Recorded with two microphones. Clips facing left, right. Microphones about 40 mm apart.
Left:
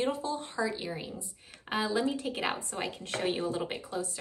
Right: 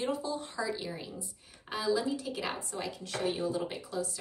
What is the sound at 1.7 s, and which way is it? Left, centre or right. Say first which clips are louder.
A woman's voice: left 1 dB; left.